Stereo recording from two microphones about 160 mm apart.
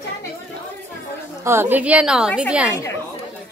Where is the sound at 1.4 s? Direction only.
15° right (ahead or behind).